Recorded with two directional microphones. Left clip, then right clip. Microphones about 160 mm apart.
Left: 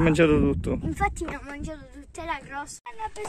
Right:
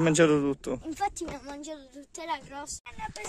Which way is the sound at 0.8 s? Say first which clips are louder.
Left 5 dB; 45° right (ahead or behind).